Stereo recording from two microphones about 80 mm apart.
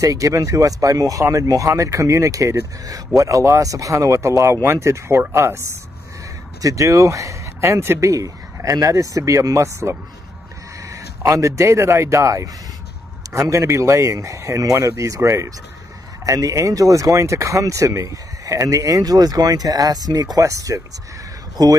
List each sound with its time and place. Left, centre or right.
0.0 s speech: right
6.6 s speech: right
8.1 s speech: right